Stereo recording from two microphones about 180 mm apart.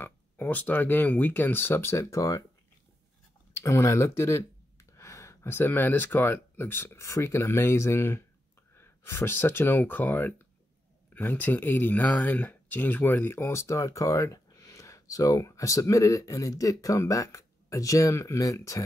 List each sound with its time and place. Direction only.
0.0 s speech: 10° left (ahead or behind)
3.5 s speech: 15° left (ahead or behind)